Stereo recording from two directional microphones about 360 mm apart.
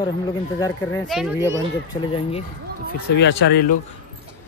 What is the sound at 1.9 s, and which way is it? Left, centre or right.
Speech, centre.